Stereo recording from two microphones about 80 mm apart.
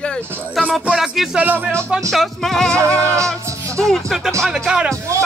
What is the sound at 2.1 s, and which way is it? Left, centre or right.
Music, centre.